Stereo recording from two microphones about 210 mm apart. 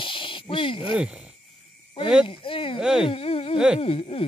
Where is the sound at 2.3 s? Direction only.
25° left (ahead or behind).